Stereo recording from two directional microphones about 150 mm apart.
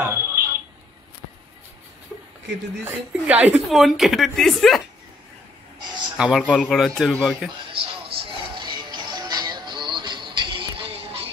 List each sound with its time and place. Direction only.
0.0 s fire alarm: 15° right (ahead or behind)
2.8 s a woman's voice: 10° right (ahead or behind)
6.1 s a man's voice: 5° right (ahead or behind)
7.7 s music: 35° right (ahead or behind)